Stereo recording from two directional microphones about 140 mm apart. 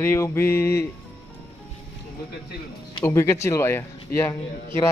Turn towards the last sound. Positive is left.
turn(degrees=20)  # may be behind; listen again after turning